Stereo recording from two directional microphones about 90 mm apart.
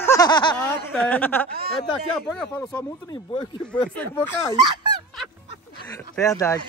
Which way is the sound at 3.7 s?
15° left (ahead or behind).